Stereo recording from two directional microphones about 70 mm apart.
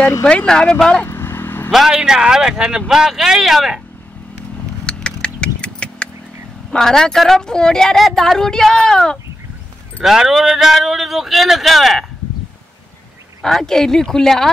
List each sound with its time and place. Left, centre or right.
0.2 s a woman's voice: centre
1.0 s vehicle: left
1.7 s speech: centre
4.8 s vehicle: centre
6.7 s a woman's voice: centre
10.0 s speech: centre
13.4 s speech: centre